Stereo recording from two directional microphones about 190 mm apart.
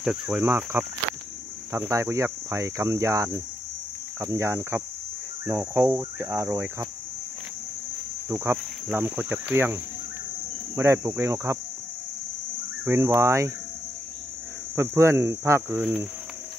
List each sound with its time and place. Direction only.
0.0 s speech: 5° right (ahead or behind)
8.3 s speech: 10° right (ahead or behind)
10.8 s speech: 15° right (ahead or behind)
12.8 s speech: 15° right (ahead or behind)
14.8 s speech: 15° right (ahead or behind)